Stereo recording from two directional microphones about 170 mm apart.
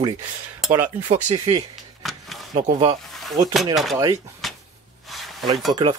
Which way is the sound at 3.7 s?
Centre (ahead or behind).